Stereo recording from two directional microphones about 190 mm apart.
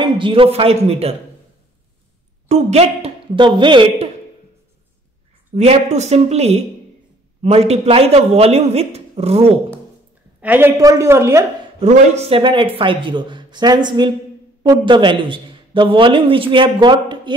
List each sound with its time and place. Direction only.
0.0 s speech: 25° right (ahead or behind)
2.4 s speech: 35° right (ahead or behind)
5.5 s speech: 35° right (ahead or behind)
10.4 s a woman's voice: 10° right (ahead or behind)
11.8 s a man's voice: 35° right (ahead or behind)